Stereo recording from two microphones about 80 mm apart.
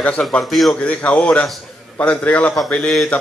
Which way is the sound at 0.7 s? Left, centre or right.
Centre.